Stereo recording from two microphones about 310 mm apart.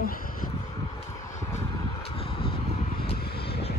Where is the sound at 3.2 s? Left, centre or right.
Left.